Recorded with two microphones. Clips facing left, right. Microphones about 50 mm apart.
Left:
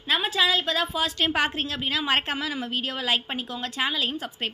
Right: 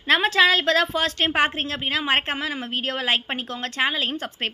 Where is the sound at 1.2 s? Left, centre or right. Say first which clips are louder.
Right 3 dB; right.